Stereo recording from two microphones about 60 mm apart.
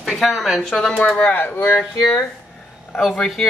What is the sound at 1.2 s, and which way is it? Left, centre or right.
Speech, left.